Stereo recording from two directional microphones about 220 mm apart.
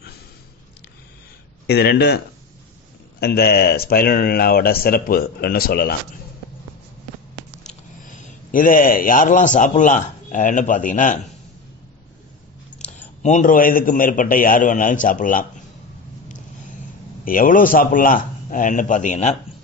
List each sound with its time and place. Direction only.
1.7 s speech: 50° left (ahead or behind)
8.1 s a man's voice: 40° left (ahead or behind)
13.2 s a man's voice: 35° left (ahead or behind)
17.2 s a man's voice: 40° left (ahead or behind)